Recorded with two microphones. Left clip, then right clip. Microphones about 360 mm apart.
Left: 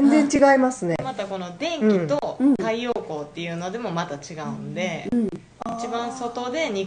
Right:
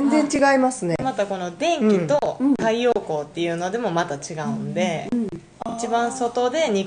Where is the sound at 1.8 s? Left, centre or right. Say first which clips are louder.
Left 3 dB; centre.